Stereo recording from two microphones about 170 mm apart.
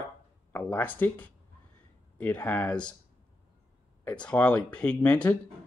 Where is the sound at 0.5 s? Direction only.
10° left (ahead or behind).